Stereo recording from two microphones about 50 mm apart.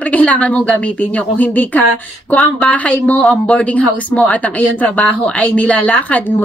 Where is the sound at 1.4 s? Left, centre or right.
Left.